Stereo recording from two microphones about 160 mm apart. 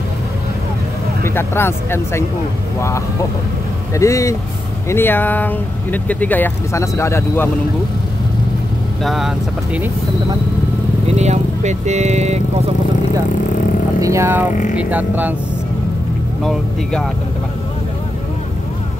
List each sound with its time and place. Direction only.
1.2 s speech: 15° left (ahead or behind)
9.0 s speech: centre (ahead or behind)
11.1 s speech: 45° right (ahead or behind)
14.0 s speech: 15° right (ahead or behind)
14.5 s speech: 50° left (ahead or behind)
14.8 s speech: 10° right (ahead or behind)
16.4 s speech: centre (ahead or behind)